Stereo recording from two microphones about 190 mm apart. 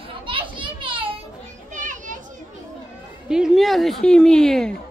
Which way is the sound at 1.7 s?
40° right (ahead or behind).